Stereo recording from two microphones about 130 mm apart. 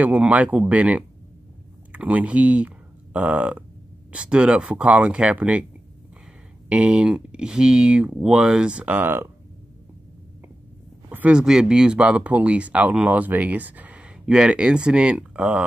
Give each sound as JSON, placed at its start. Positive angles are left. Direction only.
{"t": 0.0, "sound": "speech", "side_deg": -10}
{"t": 6.7, "sound": "speech", "side_deg": -10}
{"t": 11.1, "sound": "speech", "side_deg": -10}